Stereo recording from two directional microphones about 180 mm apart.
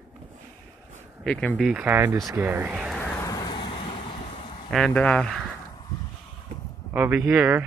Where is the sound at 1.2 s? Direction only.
5° left (ahead or behind).